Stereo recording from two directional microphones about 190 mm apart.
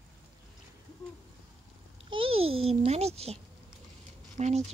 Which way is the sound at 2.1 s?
30° right (ahead or behind).